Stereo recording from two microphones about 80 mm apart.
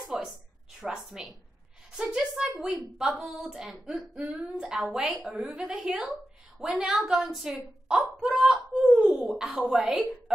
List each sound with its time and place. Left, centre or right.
0.0 s a sound: centre
2.6 s speech: centre
4.2 s a woman's voice: centre
8.4 s wail: centre